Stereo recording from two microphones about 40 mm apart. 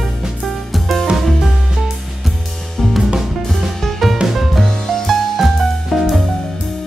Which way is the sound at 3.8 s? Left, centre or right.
Centre.